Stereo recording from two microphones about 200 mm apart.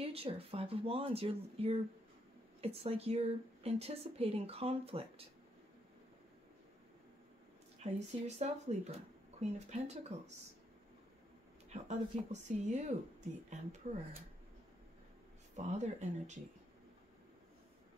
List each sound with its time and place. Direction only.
0.0 s speech: 30° right (ahead or behind)
7.8 s speech: 35° right (ahead or behind)
11.7 s speech: 35° right (ahead or behind)
15.5 s speech: 35° right (ahead or behind)